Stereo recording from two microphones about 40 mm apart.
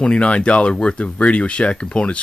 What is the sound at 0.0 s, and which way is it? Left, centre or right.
Speech, left.